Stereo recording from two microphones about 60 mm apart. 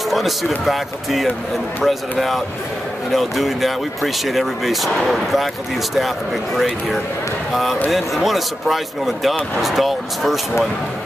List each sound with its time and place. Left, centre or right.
0.1 s speech: centre